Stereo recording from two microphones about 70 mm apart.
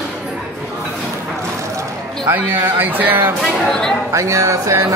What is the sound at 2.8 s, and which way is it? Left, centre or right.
Speech, right.